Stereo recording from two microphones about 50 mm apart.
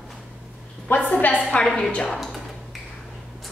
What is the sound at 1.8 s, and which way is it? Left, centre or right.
Speech, centre.